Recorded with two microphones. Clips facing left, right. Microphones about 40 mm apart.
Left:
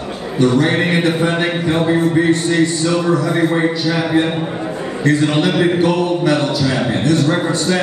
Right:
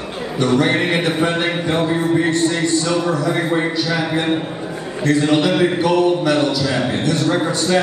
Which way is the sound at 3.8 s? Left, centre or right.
Left.